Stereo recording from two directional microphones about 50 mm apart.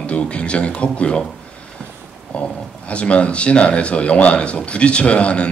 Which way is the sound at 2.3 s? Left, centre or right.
Left.